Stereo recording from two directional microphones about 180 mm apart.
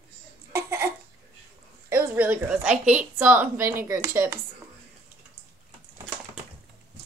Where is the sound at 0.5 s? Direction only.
15° right (ahead or behind).